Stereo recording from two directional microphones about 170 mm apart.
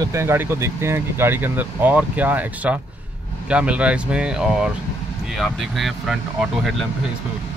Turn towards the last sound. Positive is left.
turn(degrees=0)  # may be behind; listen again after turning